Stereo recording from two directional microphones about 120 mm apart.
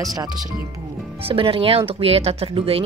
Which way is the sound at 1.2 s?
50° right (ahead or behind).